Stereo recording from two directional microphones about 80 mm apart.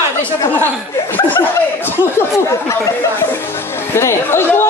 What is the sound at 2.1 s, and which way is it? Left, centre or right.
Speech, left.